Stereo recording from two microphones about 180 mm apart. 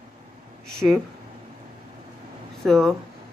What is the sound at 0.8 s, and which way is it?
Speech, 5° right (ahead or behind).